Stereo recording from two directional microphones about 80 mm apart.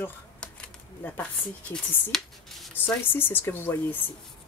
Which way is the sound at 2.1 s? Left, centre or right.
Centre.